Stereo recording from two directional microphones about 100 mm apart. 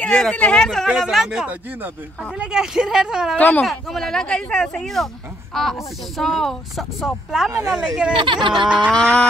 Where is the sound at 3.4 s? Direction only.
15° left (ahead or behind).